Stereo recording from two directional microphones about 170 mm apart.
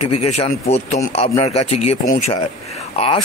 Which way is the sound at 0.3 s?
40° left (ahead or behind).